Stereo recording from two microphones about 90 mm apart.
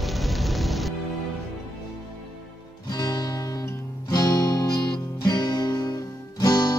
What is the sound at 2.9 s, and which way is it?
Music, 45° left (ahead or behind).